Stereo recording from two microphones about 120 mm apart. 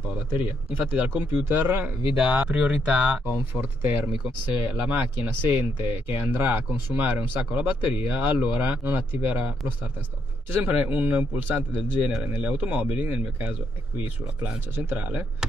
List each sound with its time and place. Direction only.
0.7 s speech: 10° right (ahead or behind)